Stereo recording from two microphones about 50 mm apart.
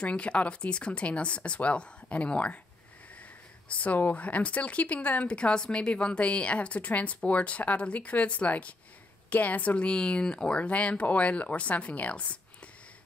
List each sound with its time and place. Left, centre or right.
0.0 s speech: left
3.6 s a woman's voice: left
9.8 s speech: centre